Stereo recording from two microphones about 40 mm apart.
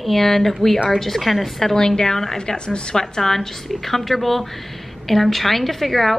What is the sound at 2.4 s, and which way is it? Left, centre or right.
A woman's voice, left.